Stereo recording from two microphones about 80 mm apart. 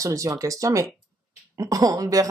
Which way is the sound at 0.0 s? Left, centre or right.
Right.